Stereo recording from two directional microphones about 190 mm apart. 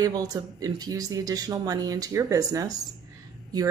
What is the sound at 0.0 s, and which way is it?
Speech, 20° right (ahead or behind).